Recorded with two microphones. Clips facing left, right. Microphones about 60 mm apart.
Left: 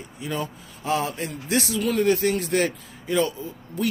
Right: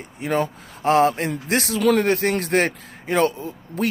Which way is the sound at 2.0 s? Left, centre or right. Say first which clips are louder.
Right 1 dB; right.